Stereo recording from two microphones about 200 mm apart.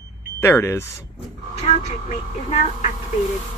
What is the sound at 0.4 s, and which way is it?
Speech, 10° left (ahead or behind).